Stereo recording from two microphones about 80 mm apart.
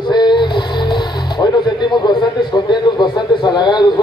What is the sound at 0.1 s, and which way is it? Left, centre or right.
Music, left.